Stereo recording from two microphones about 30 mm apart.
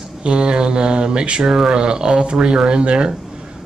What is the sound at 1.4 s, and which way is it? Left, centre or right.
Speech, centre.